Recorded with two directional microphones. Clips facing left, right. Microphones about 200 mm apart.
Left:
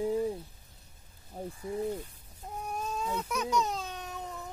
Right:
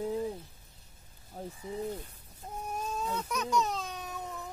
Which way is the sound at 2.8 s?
Centre (ahead or behind).